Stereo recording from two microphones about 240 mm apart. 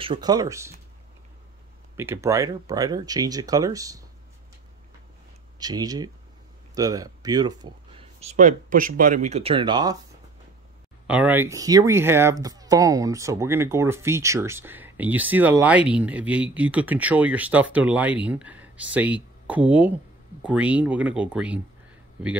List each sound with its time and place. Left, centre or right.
0.0 s speech: centre
2.0 s speech: centre
5.6 s speech: centre
11.1 s speech: centre